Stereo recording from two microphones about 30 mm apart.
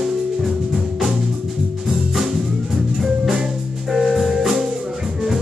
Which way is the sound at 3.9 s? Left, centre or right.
Centre.